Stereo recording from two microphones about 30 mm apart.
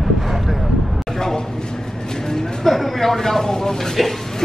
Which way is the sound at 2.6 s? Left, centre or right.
Centre.